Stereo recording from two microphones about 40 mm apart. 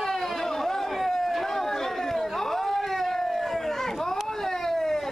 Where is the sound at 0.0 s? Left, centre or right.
Centre.